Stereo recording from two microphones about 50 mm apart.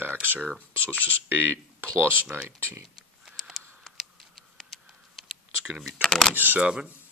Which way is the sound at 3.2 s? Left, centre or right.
Centre.